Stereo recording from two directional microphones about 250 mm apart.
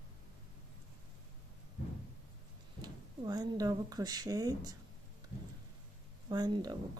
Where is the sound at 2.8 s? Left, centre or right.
Centre.